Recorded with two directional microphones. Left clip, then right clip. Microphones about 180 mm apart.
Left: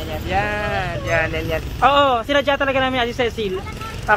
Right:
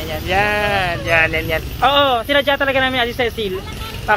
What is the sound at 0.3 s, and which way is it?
Sheep, 40° right (ahead or behind).